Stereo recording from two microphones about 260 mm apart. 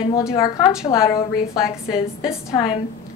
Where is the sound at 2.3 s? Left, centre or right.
Centre.